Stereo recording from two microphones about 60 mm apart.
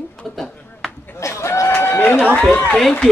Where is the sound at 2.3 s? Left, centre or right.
Centre.